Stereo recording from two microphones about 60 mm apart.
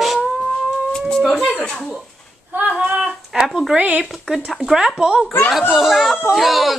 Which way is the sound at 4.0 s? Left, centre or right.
Centre.